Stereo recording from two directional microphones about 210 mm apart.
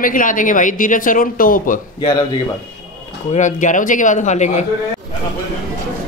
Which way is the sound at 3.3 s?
35° left (ahead or behind).